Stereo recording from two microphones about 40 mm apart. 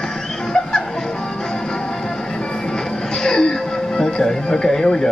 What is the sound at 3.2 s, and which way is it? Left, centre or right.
Speech, centre.